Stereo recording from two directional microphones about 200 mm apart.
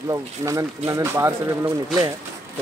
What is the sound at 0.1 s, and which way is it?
Speech, 15° right (ahead or behind).